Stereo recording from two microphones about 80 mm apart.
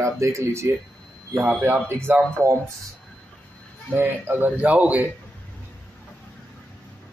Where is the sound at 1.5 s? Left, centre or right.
Right.